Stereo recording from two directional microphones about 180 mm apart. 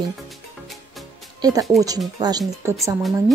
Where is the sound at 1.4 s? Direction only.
20° right (ahead or behind).